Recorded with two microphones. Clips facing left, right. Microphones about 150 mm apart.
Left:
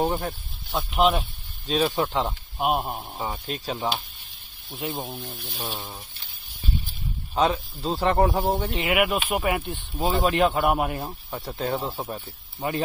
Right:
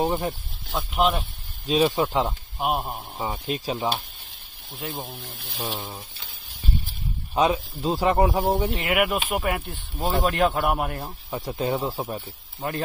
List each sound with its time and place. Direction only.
0.0 s speech: centre (ahead or behind)
5.2 s speech: 55° left (ahead or behind)
5.7 s speech: centre (ahead or behind)
7.3 s speech: 10° right (ahead or behind)
11.3 s speech: 10° right (ahead or behind)